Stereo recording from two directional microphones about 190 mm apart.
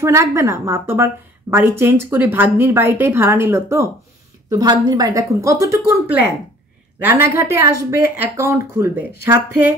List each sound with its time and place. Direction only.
0.0 s a woman's voice: 15° right (ahead or behind)
7.2 s a woman's voice: 15° right (ahead or behind)